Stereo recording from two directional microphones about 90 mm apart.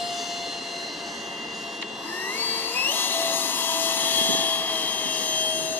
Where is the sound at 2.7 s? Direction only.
20° left (ahead or behind).